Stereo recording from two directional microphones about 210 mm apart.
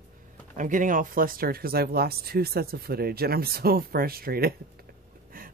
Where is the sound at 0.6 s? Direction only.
40° right (ahead or behind).